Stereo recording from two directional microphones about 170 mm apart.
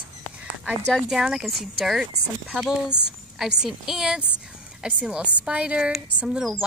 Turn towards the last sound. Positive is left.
turn(degrees=-5)  # may be behind; listen again after turning